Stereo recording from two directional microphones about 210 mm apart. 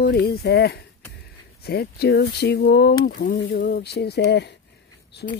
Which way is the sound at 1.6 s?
50° left (ahead or behind).